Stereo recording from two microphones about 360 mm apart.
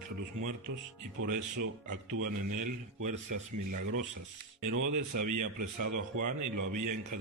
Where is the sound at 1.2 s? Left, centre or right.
Right.